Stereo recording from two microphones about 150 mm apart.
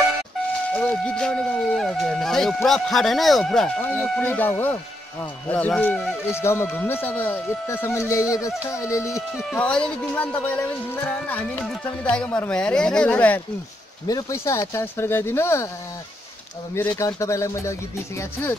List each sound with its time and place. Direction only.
0.7 s speech: 10° left (ahead or behind)
9.5 s speech: 5° left (ahead or behind)
14.0 s speech: 20° left (ahead or behind)
16.9 s speech: 20° left (ahead or behind)